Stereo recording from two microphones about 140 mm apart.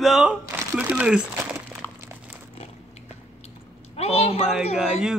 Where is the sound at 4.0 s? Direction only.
50° left (ahead or behind).